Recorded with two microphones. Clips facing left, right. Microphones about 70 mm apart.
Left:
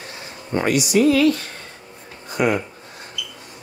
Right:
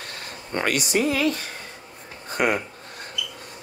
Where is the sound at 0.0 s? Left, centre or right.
Right.